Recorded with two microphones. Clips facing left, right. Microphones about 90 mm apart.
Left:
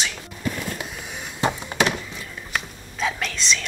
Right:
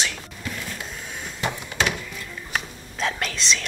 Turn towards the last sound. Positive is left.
turn(degrees=0)  # may be behind; listen again after turning